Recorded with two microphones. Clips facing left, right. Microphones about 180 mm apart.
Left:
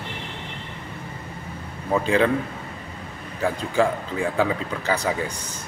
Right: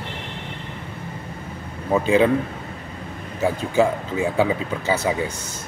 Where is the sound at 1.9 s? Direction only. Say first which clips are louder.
Right 3 dB; 10° right (ahead or behind).